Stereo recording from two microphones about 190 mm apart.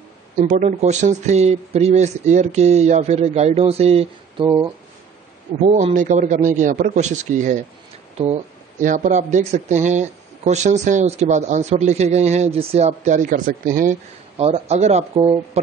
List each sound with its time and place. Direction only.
0.4 s speech: 40° right (ahead or behind)
4.5 s speech: 20° right (ahead or behind)
5.8 s speech: 40° right (ahead or behind)
14.3 s speech: 35° right (ahead or behind)